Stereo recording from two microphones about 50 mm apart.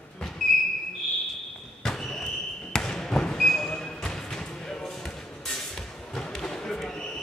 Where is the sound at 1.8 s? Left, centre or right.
Centre.